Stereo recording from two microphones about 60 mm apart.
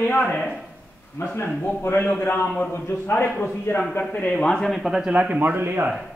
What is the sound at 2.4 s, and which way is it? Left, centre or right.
A man's voice, left.